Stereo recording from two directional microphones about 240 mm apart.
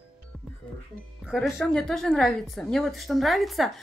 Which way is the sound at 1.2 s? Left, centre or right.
Centre.